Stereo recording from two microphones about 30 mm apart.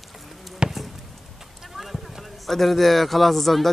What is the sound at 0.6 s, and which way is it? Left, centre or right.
Basketball bounce, right.